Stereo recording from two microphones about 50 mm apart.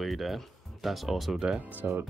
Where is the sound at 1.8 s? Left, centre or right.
Right.